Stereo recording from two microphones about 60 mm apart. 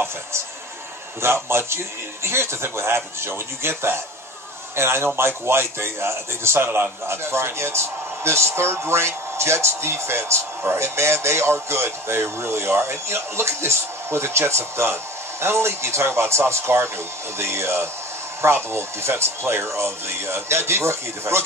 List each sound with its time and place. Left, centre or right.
1.2 s speech: right